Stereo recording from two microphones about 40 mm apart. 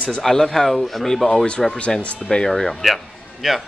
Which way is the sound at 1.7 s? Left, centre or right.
Left.